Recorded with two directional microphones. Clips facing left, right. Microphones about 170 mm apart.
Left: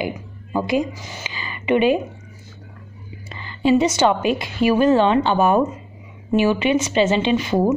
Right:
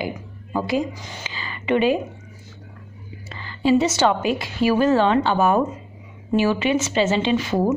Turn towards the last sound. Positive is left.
turn(degrees=15)  # may be behind; listen again after turning